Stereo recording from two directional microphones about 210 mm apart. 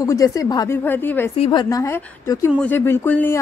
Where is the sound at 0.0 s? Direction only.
15° left (ahead or behind).